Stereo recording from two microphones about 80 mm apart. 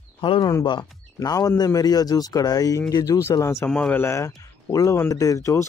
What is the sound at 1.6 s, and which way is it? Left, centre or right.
Speech, left.